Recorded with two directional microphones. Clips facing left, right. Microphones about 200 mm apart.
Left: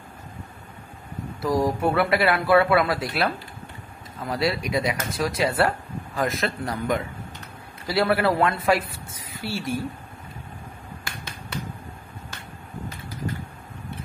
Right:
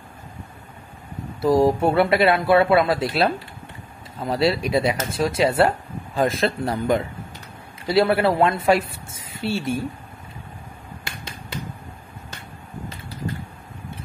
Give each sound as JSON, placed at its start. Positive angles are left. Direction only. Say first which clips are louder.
{"t": 1.4, "sound": "a woman's voice", "louder": "right 5 dB", "side_deg": -25}